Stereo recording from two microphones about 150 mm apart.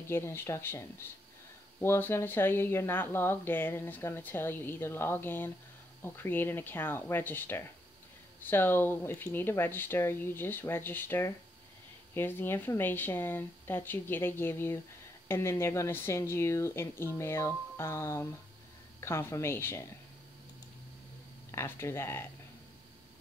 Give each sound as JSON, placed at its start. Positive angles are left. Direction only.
{"t": 0.1, "sound": "speech", "side_deg": 15}
{"t": 21.5, "sound": "speech", "side_deg": 15}